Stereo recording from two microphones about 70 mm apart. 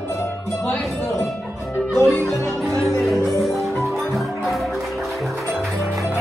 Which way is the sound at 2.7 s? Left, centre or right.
Right.